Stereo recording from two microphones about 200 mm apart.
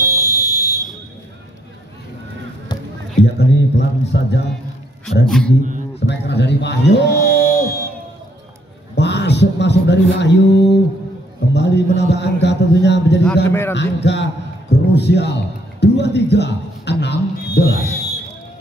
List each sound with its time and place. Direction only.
0.0 s fire alarm: 15° left (ahead or behind)
3.2 s a man's voice: 60° left (ahead or behind)
5.2 s speech: 5° left (ahead or behind)
5.9 s a man's voice: 60° left (ahead or behind)
7.3 s music: 15° left (ahead or behind)
8.9 s a man's voice: 60° left (ahead or behind)
13.5 s a man's voice: 10° left (ahead or behind)
13.7 s a man's voice: 60° left (ahead or behind)